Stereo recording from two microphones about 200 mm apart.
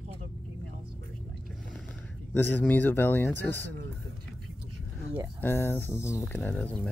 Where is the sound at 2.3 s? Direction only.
10° left (ahead or behind).